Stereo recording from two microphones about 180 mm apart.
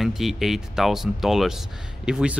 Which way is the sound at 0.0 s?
Centre (ahead or behind).